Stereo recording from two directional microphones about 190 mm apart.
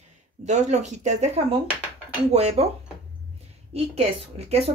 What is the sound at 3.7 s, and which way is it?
Speech, 30° right (ahead or behind).